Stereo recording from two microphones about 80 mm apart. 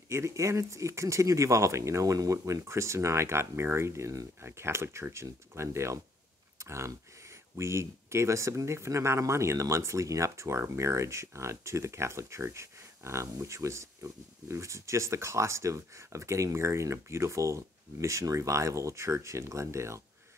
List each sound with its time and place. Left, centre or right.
0.1 s speech: right